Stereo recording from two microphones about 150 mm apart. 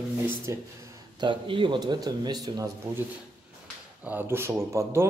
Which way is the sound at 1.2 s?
35° right (ahead or behind).